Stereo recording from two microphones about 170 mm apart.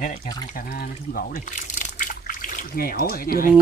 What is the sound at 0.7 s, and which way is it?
Speech, 65° left (ahead or behind).